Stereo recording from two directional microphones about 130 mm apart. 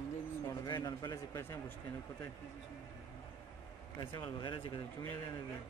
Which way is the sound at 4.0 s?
40° left (ahead or behind).